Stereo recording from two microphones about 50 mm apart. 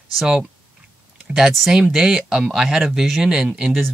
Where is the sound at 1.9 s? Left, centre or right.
Centre.